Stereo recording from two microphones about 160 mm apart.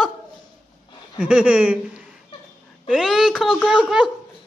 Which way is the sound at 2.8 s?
Centre (ahead or behind).